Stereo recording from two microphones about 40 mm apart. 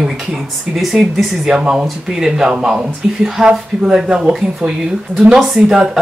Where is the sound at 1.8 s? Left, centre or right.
Centre.